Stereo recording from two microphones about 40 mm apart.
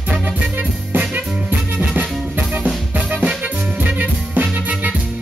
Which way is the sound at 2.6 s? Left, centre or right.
Right.